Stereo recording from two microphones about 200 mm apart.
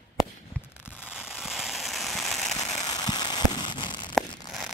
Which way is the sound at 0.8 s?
10° left (ahead or behind).